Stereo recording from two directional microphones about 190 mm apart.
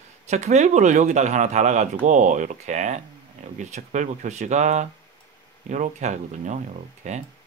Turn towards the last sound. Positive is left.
turn(degrees=-40)  # may be behind; listen again after turning